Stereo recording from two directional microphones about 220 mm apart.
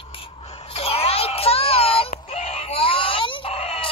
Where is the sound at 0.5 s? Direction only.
25° left (ahead or behind).